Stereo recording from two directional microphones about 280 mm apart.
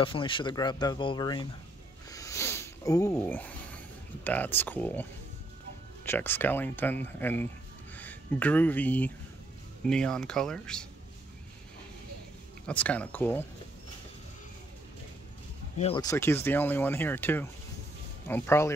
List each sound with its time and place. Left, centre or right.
0.0 s speech: centre
2.0 s a sound: centre
6.0 s speech: centre
12.6 s speech: centre
15.8 s speech: centre